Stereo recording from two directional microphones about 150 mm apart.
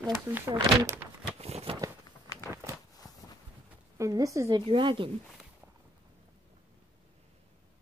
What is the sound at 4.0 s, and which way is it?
Speech, 20° right (ahead or behind).